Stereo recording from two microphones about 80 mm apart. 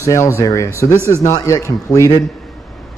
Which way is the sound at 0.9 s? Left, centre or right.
Right.